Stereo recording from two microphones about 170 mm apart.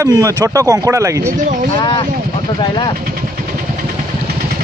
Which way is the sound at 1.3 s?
50° right (ahead or behind).